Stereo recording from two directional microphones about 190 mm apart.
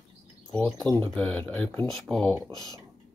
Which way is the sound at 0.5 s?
10° left (ahead or behind).